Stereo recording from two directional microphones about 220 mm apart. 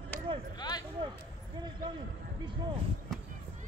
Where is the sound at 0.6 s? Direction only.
20° left (ahead or behind).